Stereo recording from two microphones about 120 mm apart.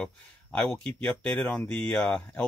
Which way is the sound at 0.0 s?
5° left (ahead or behind).